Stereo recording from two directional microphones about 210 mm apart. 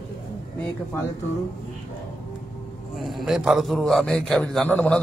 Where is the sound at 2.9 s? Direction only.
Centre (ahead or behind).